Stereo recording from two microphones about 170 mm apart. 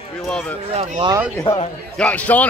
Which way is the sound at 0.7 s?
40° right (ahead or behind).